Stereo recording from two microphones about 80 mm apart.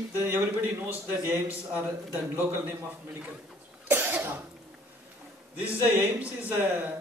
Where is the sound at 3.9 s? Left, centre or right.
Right.